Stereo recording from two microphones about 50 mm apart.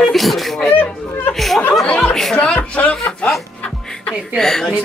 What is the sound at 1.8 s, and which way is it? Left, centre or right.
Speech, left.